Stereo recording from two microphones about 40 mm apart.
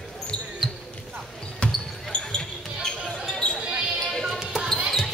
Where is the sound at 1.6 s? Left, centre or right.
Left.